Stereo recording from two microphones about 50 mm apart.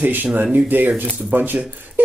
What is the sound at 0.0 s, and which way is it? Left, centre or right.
Speech, right.